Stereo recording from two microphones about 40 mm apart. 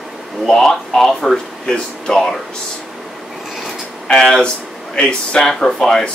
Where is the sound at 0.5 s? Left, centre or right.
Centre.